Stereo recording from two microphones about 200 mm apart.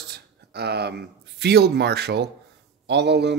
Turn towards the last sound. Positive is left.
turn(degrees=-60)  # may be behind; listen again after turning